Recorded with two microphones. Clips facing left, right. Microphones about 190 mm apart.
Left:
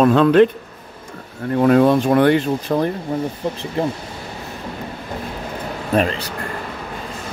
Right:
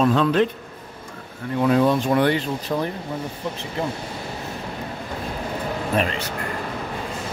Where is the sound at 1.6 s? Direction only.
55° left (ahead or behind).